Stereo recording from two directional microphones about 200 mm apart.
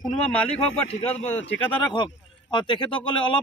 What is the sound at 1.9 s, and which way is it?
Speech, 20° left (ahead or behind).